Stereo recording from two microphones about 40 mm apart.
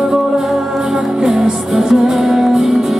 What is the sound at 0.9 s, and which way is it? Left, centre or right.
Music, centre.